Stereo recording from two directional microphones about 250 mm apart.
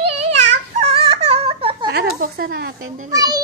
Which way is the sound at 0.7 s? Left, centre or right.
Right.